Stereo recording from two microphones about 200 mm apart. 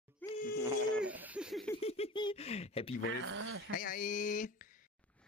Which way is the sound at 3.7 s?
45° left (ahead or behind).